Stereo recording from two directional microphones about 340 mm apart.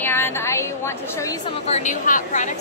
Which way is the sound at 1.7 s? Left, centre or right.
Centre.